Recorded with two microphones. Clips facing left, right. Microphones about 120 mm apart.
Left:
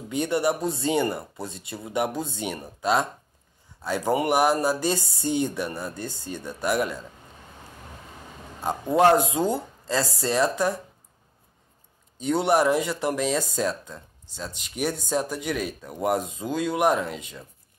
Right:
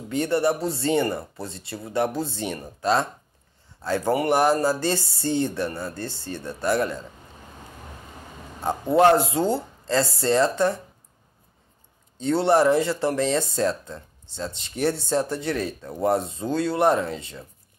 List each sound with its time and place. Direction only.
0.1 s speech: 20° left (ahead or behind)
8.9 s speech: 15° left (ahead or behind)
10.2 s speech: 10° left (ahead or behind)
12.2 s speech: 10° left (ahead or behind)